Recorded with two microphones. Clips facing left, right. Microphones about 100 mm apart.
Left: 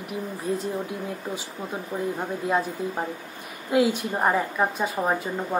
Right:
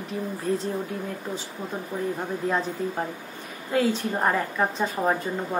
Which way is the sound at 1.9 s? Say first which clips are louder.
Left 1 dB; 15° left (ahead or behind).